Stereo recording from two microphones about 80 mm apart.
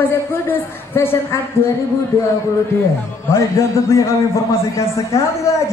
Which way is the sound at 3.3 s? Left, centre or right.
Left.